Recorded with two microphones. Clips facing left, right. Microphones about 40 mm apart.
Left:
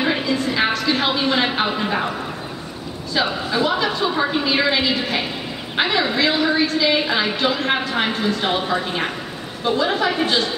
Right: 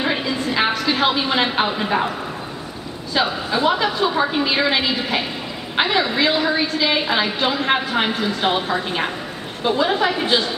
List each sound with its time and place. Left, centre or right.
0.0 s a sound: centre
3.2 s a woman's voice: centre
3.7 s a woman's voice: centre